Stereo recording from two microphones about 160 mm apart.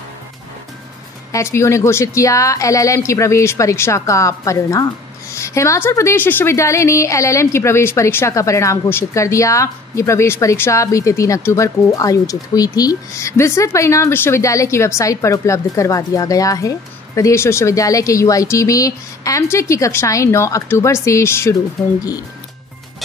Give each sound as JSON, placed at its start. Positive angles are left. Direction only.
{"t": 1.3, "sound": "a woman's voice", "side_deg": 15}